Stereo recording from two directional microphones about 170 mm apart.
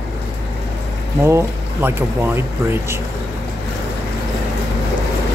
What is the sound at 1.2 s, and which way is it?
Speech, 15° right (ahead or behind).